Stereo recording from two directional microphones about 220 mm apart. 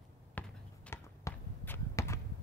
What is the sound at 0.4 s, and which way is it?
Basketball bounce, 10° left (ahead or behind).